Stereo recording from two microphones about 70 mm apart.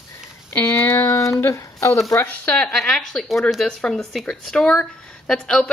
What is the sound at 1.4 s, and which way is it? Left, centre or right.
Speech, left.